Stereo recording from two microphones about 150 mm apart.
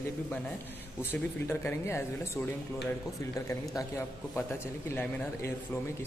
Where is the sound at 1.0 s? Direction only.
15° left (ahead or behind).